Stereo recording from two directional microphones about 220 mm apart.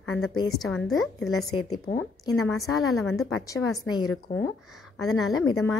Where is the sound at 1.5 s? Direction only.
20° left (ahead or behind).